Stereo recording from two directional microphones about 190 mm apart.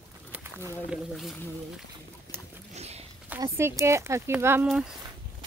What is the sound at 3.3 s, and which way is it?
Speech, 15° right (ahead or behind).